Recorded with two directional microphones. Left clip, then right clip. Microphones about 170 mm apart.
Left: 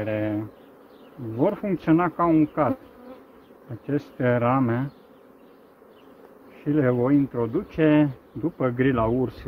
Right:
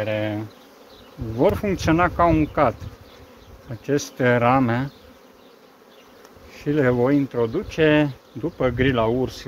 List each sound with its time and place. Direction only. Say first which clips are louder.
0.0 s speech: right 2 dB; 55° right (ahead or behind)
1.4 s speech: right 4 dB; 90° right
3.8 s speech: right 4 dB; 90° right
6.6 s speech: right 3 dB; 90° right; by 8.1 s 55° right (ahead or behind)
8.5 s speech: right 3 dB; 45° right (ahead or behind)